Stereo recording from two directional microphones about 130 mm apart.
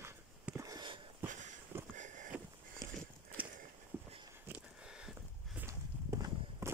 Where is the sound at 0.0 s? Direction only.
20° right (ahead or behind).